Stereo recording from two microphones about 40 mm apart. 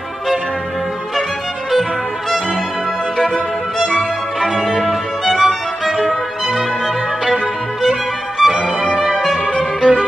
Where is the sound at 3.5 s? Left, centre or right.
Centre.